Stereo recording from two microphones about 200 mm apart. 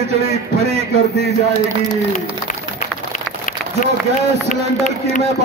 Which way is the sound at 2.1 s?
40° left (ahead or behind).